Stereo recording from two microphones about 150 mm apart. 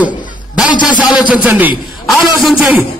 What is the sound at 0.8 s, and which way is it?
Speech, 30° left (ahead or behind).